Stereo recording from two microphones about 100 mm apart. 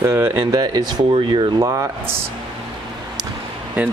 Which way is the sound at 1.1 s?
55° right (ahead or behind).